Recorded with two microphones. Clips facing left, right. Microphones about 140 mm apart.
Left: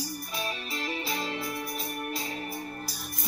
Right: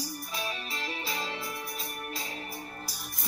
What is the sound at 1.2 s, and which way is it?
Music, 50° left (ahead or behind).